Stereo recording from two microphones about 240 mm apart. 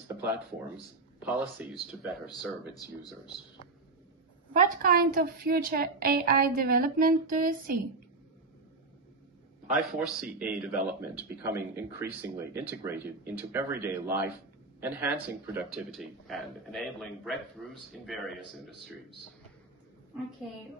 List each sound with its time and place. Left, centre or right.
0.1 s a sound: centre
1.2 s speech: centre
2.7 s speech: centre
4.6 s a woman's voice: right
9.8 s a man's voice: centre
18.4 s a man's voice: right